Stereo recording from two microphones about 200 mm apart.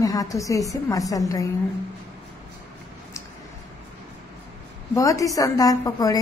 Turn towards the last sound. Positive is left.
turn(degrees=20)  # may be behind; listen again after turning